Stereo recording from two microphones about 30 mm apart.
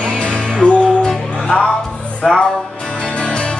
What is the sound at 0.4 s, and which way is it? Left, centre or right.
Music, left.